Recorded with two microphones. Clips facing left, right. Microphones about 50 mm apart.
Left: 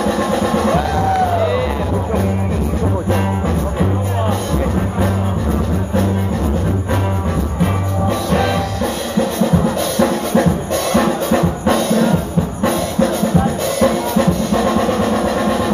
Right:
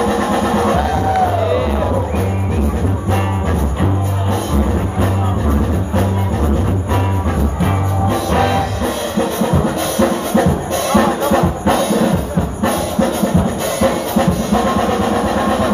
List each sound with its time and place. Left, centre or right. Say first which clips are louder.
0.0 s music: right 1 dB; right
0.4 s music: right 1 dB; centre
9.9 s music: right 1 dB; centre
13.7 s music: even; centre